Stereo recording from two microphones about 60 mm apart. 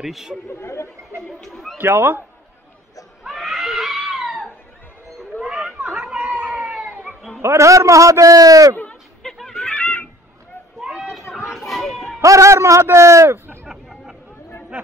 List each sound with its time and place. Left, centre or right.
0.0 s speech: centre
0.5 s speech: left
1.4 s speech: centre
1.8 s speech: right
3.3 s cat: centre
5.4 s a sound: centre
7.4 s a man's voice: right
9.2 s a sound: centre
10.8 s a sound: centre
11.5 s children playing: centre
12.2 s a man's voice: right
13.7 s chatter: centre